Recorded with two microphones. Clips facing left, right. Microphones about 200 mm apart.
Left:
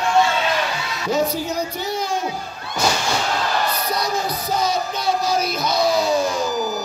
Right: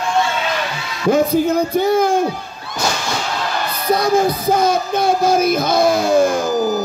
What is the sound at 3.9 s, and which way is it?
Music, 50° right (ahead or behind).